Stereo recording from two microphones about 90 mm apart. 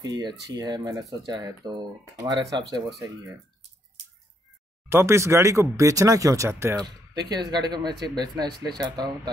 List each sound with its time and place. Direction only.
0.0 s speech: 45° right (ahead or behind)
4.8 s speech: 30° right (ahead or behind)
6.8 s speech: 50° right (ahead or behind)